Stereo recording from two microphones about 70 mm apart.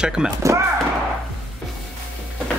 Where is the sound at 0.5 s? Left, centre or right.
Right.